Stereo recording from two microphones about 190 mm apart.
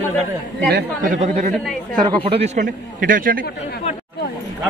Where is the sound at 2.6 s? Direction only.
45° right (ahead or behind).